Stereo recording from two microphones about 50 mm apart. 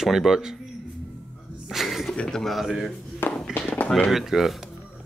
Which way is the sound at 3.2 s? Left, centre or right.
Left.